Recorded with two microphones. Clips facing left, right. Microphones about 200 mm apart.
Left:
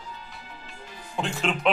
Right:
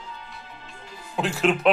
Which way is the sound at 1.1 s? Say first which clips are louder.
Right 5 dB; 5° right (ahead or behind).